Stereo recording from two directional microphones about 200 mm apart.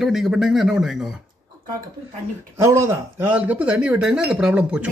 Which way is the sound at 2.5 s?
15° right (ahead or behind).